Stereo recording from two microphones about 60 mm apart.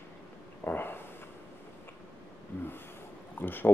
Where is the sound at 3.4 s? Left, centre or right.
Left.